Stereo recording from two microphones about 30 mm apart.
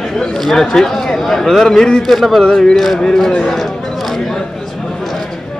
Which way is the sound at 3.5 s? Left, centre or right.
Centre.